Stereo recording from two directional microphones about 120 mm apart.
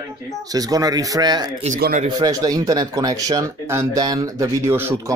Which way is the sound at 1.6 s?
80° right.